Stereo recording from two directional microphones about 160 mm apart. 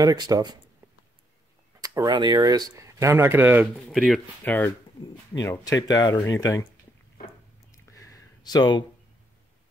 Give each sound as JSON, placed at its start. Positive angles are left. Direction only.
{"t": 0.0, "sound": "speech", "side_deg": -25}
{"t": 1.8, "sound": "speech", "side_deg": -25}
{"t": 3.9, "sound": "speech", "side_deg": 0}
{"t": 4.5, "sound": "speech", "side_deg": 10}
{"t": 7.7, "sound": "a sound", "side_deg": 20}